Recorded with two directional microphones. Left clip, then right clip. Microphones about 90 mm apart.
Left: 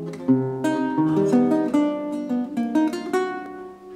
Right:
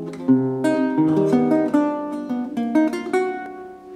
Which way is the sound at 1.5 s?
15° right (ahead or behind).